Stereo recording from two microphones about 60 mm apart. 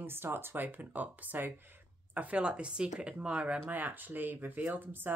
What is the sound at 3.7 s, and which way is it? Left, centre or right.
Speech, right.